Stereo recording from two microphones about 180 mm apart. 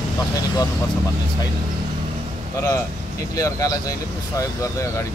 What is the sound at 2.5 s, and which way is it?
Speech, 15° left (ahead or behind).